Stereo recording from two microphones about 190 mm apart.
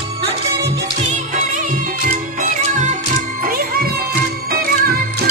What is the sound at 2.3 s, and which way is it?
Music, 40° right (ahead or behind).